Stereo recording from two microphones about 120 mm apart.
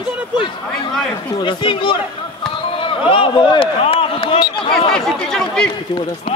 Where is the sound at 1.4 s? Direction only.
45° left (ahead or behind).